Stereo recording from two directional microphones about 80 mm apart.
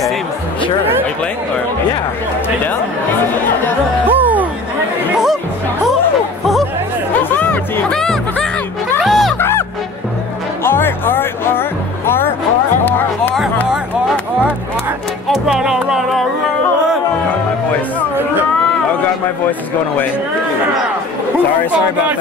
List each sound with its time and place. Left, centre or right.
4.0 s music: right
7.9 s music: centre
9.4 s music: left
15.2 s music: centre